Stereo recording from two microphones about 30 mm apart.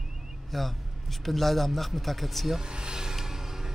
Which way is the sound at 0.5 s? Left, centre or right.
Centre.